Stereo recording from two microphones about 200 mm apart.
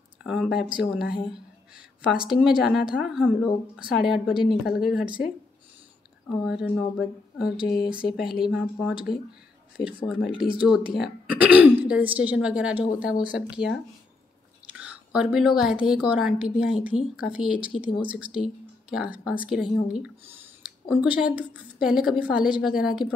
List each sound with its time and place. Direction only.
0.2 s speech: 5° right (ahead or behind)
0.5 s speech: 50° left (ahead or behind)
0.7 s speech: 5° right (ahead or behind)
6.6 s speech: 5° right (ahead or behind)
10.0 s speech: 5° right (ahead or behind)
14.7 s whispering: 5° right (ahead or behind)
15.9 s speech: 5° right (ahead or behind)